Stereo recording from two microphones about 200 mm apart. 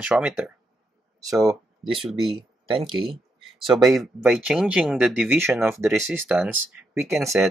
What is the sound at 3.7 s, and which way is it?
Speech, centre (ahead or behind).